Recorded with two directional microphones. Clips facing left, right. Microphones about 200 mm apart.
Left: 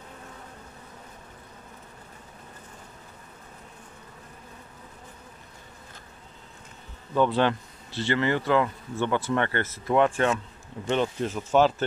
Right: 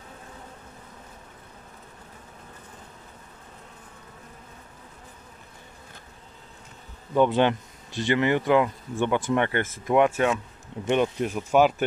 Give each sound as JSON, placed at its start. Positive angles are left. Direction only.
{"t": 7.2, "sound": "speech", "side_deg": -20}